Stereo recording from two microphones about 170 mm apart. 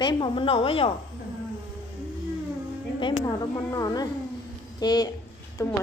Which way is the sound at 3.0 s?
30° left (ahead or behind).